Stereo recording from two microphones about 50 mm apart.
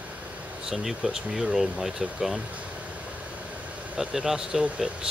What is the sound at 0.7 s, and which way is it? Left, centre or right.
Speech, centre.